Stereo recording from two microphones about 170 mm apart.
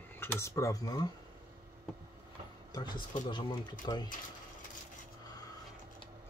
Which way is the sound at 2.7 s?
25° left (ahead or behind).